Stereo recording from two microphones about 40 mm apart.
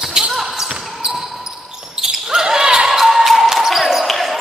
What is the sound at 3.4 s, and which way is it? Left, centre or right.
Basketball bounce, centre.